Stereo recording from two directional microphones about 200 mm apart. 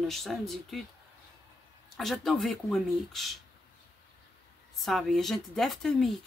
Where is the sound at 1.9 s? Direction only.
Centre (ahead or behind).